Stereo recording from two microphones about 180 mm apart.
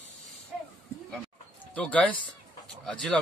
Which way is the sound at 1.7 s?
10° left (ahead or behind).